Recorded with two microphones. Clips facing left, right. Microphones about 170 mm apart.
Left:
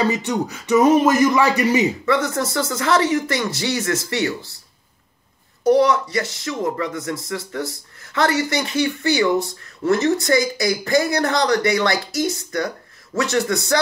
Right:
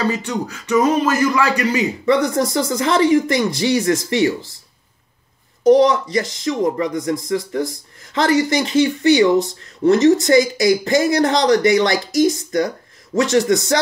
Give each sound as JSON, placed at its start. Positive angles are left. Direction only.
{"t": 0.3, "sound": "speech", "side_deg": 15}
{"t": 2.0, "sound": "speech", "side_deg": -15}
{"t": 5.6, "sound": "speech", "side_deg": -20}